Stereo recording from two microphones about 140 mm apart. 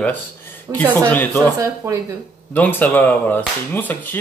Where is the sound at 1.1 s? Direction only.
15° left (ahead or behind).